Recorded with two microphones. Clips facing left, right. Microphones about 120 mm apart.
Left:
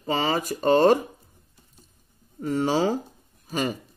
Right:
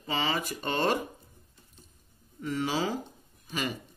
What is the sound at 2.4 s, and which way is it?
Speech, 40° left (ahead or behind).